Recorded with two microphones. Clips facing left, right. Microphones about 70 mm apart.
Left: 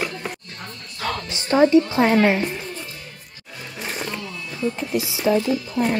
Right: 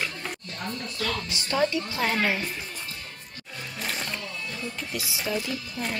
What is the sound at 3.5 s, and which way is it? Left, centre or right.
Music, centre.